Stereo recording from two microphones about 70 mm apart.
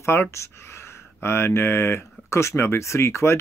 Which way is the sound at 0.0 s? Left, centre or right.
Left.